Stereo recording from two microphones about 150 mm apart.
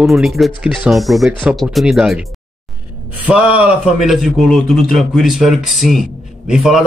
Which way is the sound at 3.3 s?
10° right (ahead or behind).